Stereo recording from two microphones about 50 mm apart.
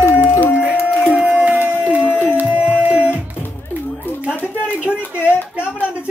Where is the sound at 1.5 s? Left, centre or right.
Right.